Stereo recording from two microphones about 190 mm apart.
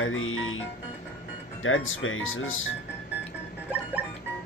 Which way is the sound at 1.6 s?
90° left.